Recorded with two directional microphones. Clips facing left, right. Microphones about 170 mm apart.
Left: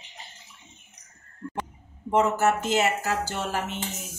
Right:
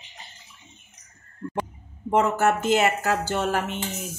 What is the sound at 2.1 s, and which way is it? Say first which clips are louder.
Speech: right 1 dB; 55° right (ahead or behind).